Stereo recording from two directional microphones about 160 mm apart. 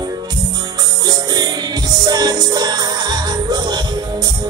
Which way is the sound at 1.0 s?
25° right (ahead or behind).